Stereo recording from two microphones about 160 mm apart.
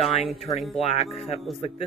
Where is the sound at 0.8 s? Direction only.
40° left (ahead or behind).